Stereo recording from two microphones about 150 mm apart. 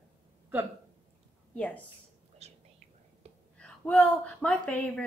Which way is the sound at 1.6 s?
10° left (ahead or behind).